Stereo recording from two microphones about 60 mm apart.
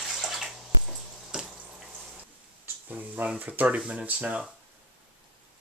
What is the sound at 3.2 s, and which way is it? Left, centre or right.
Speech, right.